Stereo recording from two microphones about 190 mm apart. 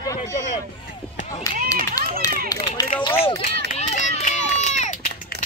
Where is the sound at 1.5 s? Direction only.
45° right (ahead or behind).